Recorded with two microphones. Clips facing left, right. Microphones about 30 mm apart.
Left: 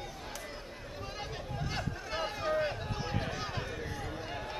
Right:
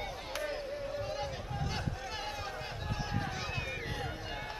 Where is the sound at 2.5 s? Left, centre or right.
Centre.